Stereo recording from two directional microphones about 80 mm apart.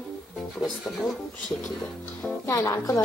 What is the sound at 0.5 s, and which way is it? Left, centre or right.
Speech, centre.